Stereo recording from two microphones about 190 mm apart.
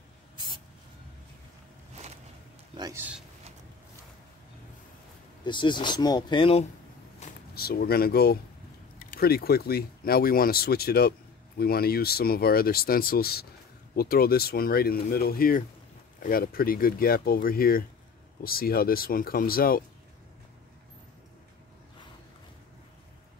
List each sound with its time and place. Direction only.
2.7 s a man's voice: 15° right (ahead or behind)
5.4 s speech: 25° left (ahead or behind)
7.5 s speech: 55° left (ahead or behind)